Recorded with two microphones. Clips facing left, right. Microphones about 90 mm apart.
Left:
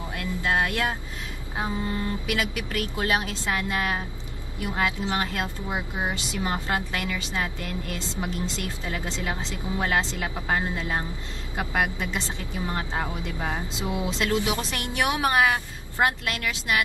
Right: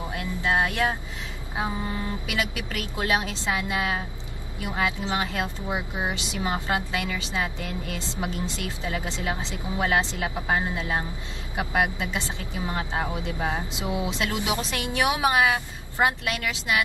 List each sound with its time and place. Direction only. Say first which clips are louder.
0.1 s vehicle: even; 20° right (ahead or behind)
1.6 s a woman's voice: left 1 dB; 15° right (ahead or behind)